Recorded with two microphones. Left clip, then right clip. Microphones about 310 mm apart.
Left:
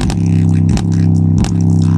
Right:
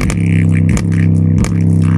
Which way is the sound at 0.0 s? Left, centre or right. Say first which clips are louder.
Right 1 dB; centre.